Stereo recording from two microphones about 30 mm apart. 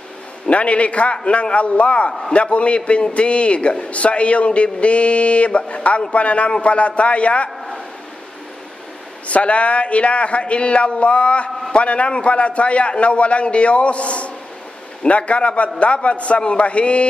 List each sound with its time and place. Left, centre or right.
0.5 s a man's voice: left
9.3 s a man's voice: left